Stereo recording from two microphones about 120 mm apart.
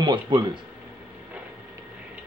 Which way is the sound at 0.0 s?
40° right (ahead or behind).